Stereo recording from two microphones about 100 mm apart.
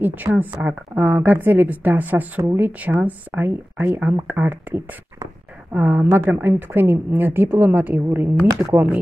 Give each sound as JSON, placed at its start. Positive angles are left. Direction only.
{"t": 0.0, "sound": "a woman's voice", "side_deg": -20}